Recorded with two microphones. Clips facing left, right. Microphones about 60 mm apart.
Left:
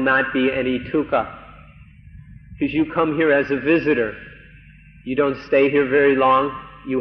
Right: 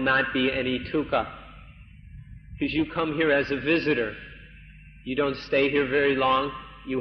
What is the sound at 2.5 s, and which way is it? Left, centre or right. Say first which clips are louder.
A man's voice: left 7 dB; left.